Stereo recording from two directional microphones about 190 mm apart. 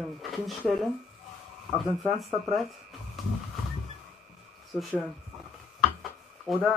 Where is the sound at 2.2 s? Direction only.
Centre (ahead or behind).